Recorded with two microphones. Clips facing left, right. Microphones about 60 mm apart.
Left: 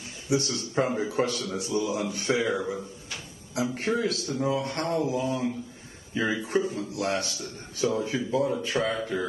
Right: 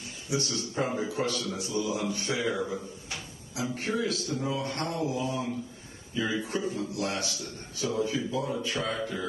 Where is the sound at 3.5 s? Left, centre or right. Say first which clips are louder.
Left 4 dB; left.